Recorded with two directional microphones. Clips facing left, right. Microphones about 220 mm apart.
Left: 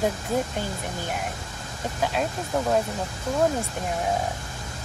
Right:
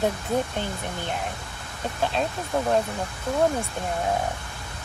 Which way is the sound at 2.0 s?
10° left (ahead or behind).